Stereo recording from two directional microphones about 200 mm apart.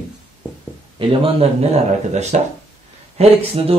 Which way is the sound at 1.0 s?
25° right (ahead or behind).